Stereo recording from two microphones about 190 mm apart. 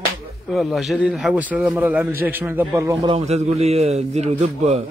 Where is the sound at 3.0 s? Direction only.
35° right (ahead or behind).